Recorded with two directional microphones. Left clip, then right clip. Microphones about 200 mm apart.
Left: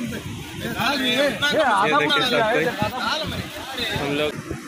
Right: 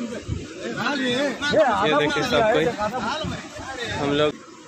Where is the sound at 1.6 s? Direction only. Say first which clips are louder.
Even; 20° right (ahead or behind).